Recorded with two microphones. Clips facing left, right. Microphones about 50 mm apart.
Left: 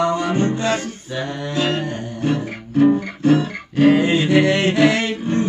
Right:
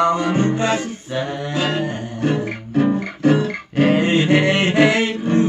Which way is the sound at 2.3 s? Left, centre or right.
Centre.